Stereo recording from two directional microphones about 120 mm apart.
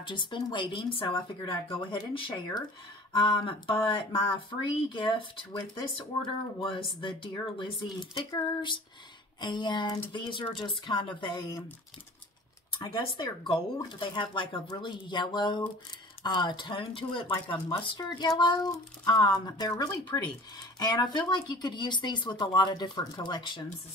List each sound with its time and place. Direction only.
0.0 s speech: 40° left (ahead or behind)
6.6 s speech: 45° left (ahead or behind)
12.7 s speech: 40° left (ahead or behind)